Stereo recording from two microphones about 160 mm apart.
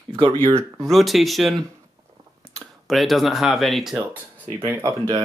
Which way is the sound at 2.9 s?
Centre (ahead or behind).